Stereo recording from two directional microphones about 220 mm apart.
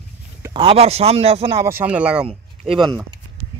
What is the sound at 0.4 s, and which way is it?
A man's voice, 20° right (ahead or behind).